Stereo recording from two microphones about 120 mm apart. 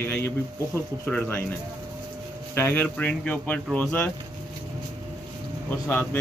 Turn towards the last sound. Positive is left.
turn(degrees=20)  # may be behind; listen again after turning